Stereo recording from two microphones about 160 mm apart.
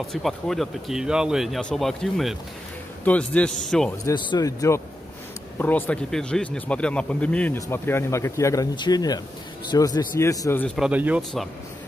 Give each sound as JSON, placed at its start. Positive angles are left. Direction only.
{"t": 0.0, "sound": "speech", "side_deg": 0}
{"t": 4.0, "sound": "speech", "side_deg": 30}
{"t": 10.8, "sound": "speech", "side_deg": -10}